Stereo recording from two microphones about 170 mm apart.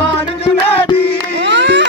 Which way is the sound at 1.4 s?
90° right.